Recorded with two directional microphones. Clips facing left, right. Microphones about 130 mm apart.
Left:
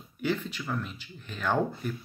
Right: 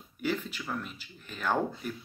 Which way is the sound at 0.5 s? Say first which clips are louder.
Left 2 dB; 40° right (ahead or behind).